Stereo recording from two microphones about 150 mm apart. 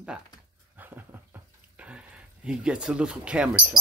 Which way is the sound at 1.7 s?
10° right (ahead or behind).